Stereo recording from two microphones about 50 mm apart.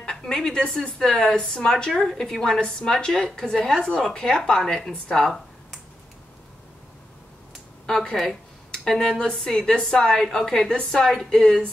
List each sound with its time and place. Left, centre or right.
0.1 s a woman's voice: centre
7.8 s a woman's voice: centre